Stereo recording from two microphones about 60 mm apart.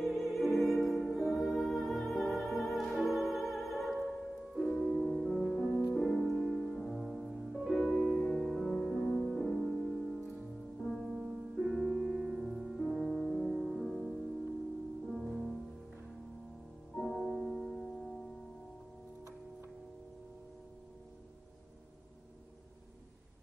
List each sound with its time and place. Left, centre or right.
0.0 s music: centre
11.1 s music: centre
11.5 s music: centre
16.9 s music: centre